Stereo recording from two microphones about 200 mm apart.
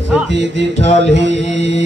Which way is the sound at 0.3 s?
60° right (ahead or behind).